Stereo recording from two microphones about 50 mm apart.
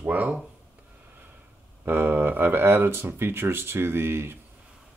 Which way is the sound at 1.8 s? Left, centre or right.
Right.